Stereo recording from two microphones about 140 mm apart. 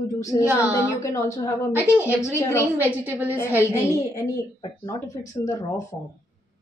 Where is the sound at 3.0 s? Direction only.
10° right (ahead or behind).